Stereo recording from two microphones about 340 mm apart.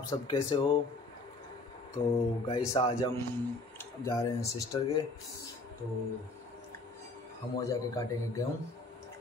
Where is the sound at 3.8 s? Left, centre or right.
Centre.